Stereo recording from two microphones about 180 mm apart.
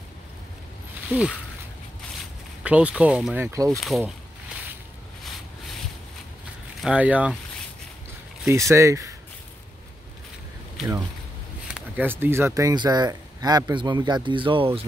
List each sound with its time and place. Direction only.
1.0 s speech: 5° right (ahead or behind)
2.6 s speech: 5° right (ahead or behind)
3.7 s speech: centre (ahead or behind)
6.8 s speech: 5° right (ahead or behind)
8.5 s speech: 15° right (ahead or behind)
11.6 s speech: 5° right (ahead or behind); by 14.9 s 30° right (ahead or behind)